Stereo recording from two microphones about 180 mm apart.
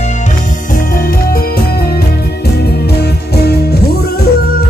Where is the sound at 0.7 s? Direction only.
50° left (ahead or behind).